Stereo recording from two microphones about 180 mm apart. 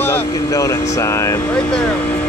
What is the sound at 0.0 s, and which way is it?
Speech, 15° left (ahead or behind).